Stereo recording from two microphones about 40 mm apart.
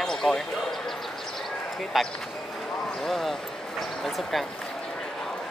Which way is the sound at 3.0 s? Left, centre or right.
Centre.